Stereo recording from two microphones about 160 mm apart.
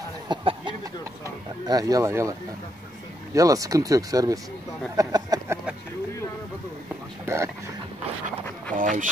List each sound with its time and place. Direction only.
0.3 s a sound: 30° right (ahead or behind)
1.2 s speech: 20° right (ahead or behind)
3.3 s speech: 20° right (ahead or behind)
7.2 s speech: 15° right (ahead or behind)
8.7 s speech: 55° right (ahead or behind)